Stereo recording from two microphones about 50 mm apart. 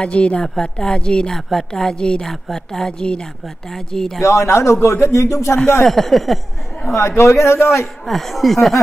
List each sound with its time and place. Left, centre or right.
0.0 s a woman's voice: left
4.2 s a man's voice: left
4.8 s speech: left
5.9 s speech: centre
7.0 s a man's voice: left
8.0 s speech: centre